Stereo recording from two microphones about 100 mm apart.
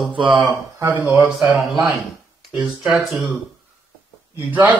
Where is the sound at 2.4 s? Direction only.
5° right (ahead or behind).